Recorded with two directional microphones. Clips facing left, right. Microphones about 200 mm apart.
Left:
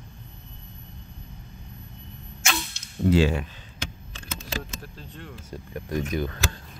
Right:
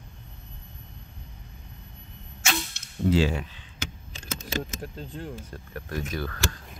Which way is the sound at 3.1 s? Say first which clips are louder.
Left 2 dB; 60° left (ahead or behind).